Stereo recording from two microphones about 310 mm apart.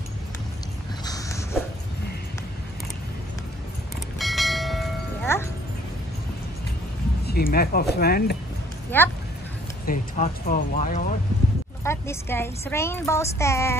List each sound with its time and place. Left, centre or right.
4.2 s train: centre
5.3 s music: centre
7.2 s speech: left
8.9 s a woman's voice: centre
9.8 s speech: left
11.8 s a woman's voice: centre